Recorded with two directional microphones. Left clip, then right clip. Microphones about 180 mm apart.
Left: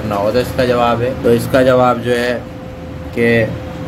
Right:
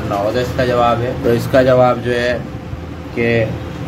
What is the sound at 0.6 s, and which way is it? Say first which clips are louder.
Speech: right 1 dB; 20° left (ahead or behind).